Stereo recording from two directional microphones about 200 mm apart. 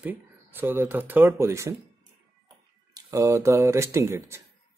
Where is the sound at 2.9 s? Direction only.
15° right (ahead or behind).